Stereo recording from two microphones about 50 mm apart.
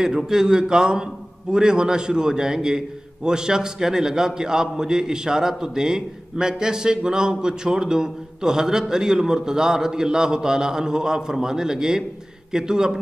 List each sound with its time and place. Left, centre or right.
0.0 s a man's voice: centre